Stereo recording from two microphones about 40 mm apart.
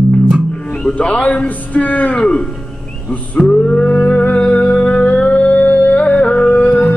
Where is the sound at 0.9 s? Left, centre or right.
Left.